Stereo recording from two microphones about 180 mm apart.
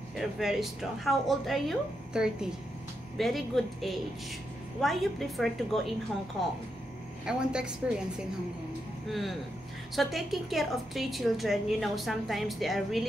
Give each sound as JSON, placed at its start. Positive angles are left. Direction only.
{"t": 0.1, "sound": "a woman's voice", "side_deg": 0}
{"t": 7.2, "sound": "a woman's voice", "side_deg": -5}
{"t": 9.9, "sound": "a woman's voice", "side_deg": 0}